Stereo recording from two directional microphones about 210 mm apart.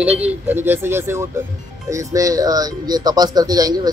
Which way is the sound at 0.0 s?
5° right (ahead or behind).